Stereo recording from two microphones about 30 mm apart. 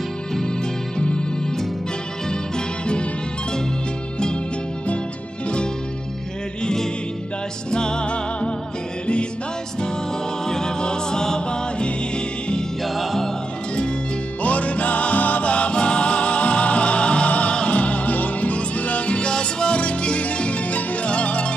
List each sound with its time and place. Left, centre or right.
0.9 s music: left
6.6 s music: centre; by 8.5 s left
10.4 s music: left
12.8 s music: centre
14.4 s music: left
15.4 s music: left
17.3 s music: left
19.2 s music: left
19.8 s music: left